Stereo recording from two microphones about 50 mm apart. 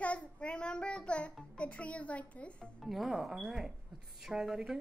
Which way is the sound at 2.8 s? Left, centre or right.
Centre.